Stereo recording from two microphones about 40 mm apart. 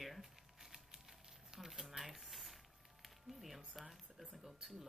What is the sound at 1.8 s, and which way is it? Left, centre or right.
Speech, centre.